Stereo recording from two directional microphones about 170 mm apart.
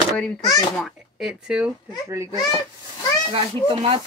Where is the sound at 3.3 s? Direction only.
30° right (ahead or behind).